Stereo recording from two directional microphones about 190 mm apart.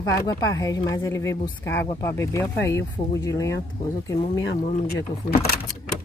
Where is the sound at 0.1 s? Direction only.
20° left (ahead or behind).